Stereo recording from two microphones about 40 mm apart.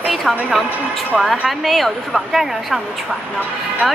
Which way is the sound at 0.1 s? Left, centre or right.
Centre.